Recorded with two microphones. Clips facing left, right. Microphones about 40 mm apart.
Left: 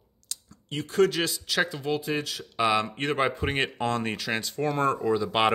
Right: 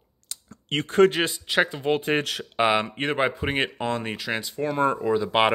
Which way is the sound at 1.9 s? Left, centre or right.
Right.